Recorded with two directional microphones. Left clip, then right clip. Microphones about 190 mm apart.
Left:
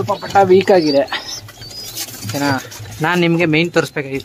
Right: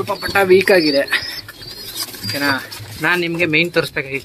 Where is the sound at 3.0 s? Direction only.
35° left (ahead or behind).